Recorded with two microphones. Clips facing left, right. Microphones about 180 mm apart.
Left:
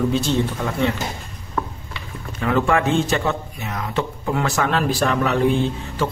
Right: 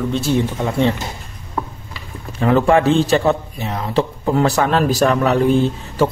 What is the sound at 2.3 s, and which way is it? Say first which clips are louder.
A man's voice: right 5 dB; 35° right (ahead or behind).